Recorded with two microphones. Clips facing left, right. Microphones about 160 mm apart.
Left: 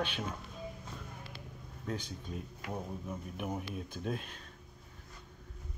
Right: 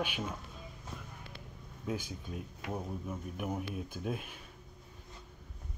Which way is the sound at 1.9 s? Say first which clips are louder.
Right 1 dB; 5° right (ahead or behind).